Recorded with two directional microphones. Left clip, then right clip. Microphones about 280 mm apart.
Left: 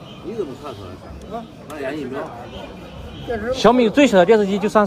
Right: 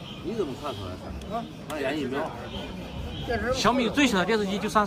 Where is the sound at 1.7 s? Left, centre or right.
Right.